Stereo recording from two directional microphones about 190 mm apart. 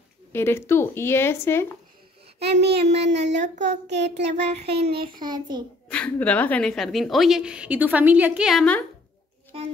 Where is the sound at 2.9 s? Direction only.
65° right (ahead or behind).